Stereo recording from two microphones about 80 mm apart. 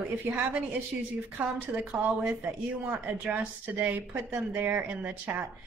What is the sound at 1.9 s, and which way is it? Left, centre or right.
Speech, centre.